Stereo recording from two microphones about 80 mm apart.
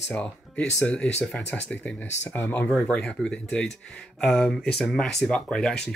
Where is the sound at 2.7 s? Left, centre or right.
Centre.